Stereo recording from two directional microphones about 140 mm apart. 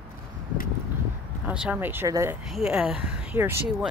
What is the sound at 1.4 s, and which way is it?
Speech, 10° right (ahead or behind).